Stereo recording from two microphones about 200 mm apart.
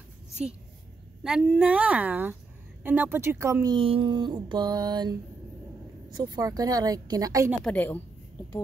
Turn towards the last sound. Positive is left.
turn(degrees=10)  # may be behind; listen again after turning